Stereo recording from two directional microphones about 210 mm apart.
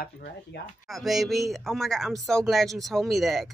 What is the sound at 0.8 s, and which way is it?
Speech, centre (ahead or behind).